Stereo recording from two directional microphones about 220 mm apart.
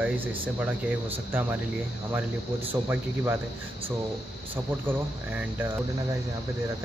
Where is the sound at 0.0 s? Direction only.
10° right (ahead or behind).